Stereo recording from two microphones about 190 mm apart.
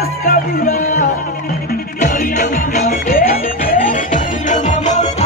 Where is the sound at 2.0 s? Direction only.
45° left (ahead or behind).